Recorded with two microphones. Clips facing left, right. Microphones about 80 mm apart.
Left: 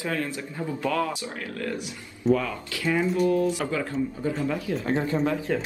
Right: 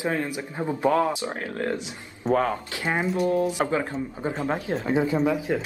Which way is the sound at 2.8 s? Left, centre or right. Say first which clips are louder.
Left 2 dB; right.